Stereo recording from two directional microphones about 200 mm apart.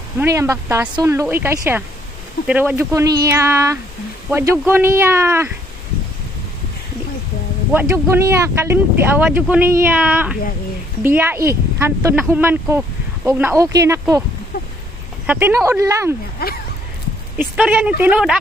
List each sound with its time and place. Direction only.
0.2 s speech: 15° right (ahead or behind)
7.7 s speech: 10° right (ahead or behind)
15.2 s speech: 10° right (ahead or behind)
16.4 s speech: 50° left (ahead or behind)
17.4 s speech: 10° right (ahead or behind)